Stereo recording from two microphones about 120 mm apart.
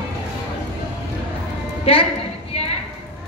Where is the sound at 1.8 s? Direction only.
50° left (ahead or behind).